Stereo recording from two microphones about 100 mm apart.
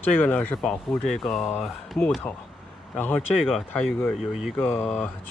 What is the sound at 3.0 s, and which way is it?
Speech, 15° left (ahead or behind).